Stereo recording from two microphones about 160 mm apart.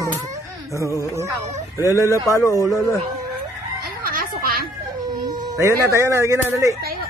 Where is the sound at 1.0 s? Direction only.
20° right (ahead or behind).